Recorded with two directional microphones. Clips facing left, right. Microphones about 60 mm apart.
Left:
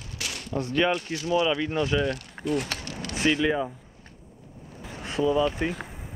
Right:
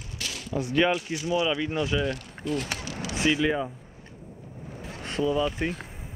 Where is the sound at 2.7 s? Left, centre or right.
Centre.